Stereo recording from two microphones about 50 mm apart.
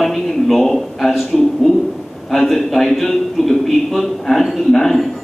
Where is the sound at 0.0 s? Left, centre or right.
Centre.